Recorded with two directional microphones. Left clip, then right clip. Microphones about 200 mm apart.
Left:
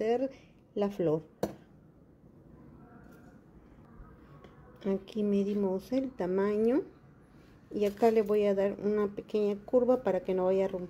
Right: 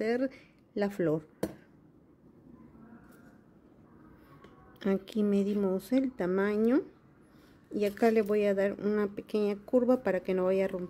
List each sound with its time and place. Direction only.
0.0 s speech: 15° right (ahead or behind)
4.7 s speech: 20° right (ahead or behind)